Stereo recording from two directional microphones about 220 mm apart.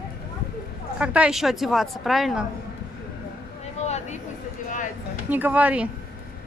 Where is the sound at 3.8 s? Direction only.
30° left (ahead or behind).